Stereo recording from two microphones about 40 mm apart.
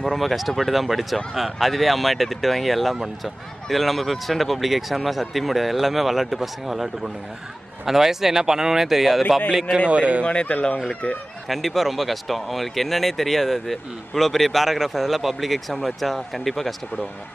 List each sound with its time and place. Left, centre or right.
0.0 s speech: centre
9.8 s speech: right
10.2 s speech: left
11.4 s speech: centre